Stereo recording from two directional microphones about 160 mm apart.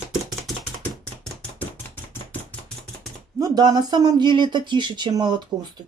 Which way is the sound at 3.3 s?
25° right (ahead or behind).